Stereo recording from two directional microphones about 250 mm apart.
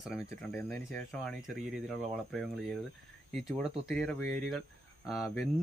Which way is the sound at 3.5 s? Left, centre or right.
Centre.